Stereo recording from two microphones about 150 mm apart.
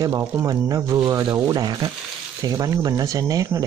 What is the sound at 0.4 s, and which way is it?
Speech, 25° right (ahead or behind).